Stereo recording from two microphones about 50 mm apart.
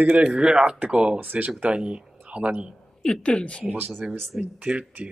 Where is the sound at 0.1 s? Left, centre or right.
Right.